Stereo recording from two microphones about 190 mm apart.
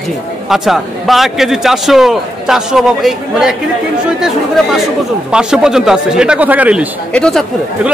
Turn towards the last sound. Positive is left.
turn(degrees=5)  # may be behind; listen again after turning